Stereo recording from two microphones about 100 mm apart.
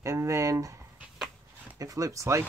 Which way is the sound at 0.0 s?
30° right (ahead or behind).